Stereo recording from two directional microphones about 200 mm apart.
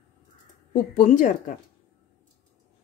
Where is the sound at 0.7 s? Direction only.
40° left (ahead or behind).